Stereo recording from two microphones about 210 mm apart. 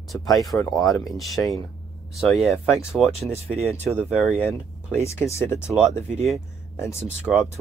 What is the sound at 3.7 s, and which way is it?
Speech, 10° left (ahead or behind).